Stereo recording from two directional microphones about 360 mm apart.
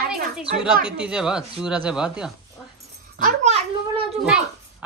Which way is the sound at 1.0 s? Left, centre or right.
Centre.